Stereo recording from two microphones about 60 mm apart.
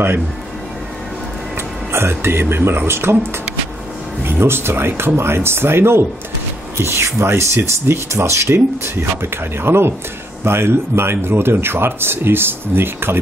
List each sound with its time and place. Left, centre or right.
1.9 s speech: right